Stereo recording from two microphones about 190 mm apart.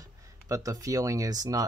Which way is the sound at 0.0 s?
15° right (ahead or behind).